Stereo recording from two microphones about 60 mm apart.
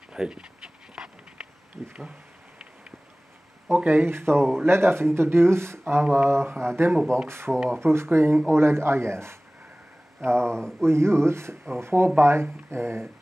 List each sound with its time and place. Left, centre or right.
0.1 s dog: centre
3.7 s speech: right
10.5 s speech: centre
10.8 s speech: right